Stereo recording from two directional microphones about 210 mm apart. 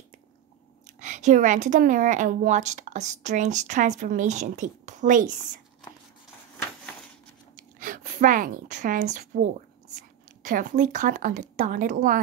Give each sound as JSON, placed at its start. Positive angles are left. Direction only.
{"t": 0.9, "sound": "speech", "side_deg": -35}
{"t": 7.5, "sound": "a woman's voice", "side_deg": -40}